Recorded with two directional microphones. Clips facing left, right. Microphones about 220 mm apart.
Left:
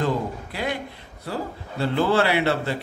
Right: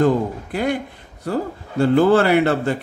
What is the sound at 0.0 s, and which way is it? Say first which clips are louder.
Speech: right 7 dB; 50° right (ahead or behind).